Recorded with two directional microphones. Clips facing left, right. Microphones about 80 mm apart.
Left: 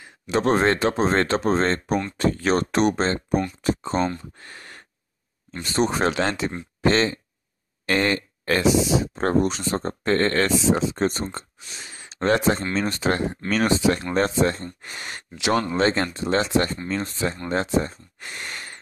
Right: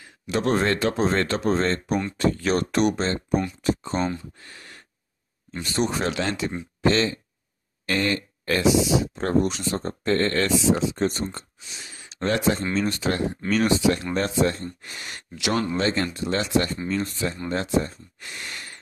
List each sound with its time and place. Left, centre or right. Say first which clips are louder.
0.3 s speech: left 3 dB; left
3.9 s speech: left 2 dB; centre
4.4 s speech: left 3 dB; left
5.7 s speech: left 3 dB; left